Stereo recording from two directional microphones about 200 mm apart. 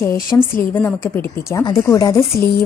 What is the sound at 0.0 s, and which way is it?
A woman's voice, 10° left (ahead or behind).